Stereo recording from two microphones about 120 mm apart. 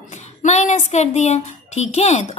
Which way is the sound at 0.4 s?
80° left.